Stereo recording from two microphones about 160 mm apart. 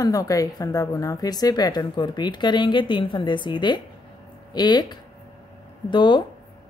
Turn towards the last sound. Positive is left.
turn(degrees=30)  # may be behind; listen again after turning